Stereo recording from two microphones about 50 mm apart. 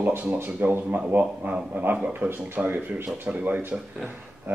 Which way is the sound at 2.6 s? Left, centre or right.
Right.